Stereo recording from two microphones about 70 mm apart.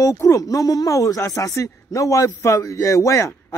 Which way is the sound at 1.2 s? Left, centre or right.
Left.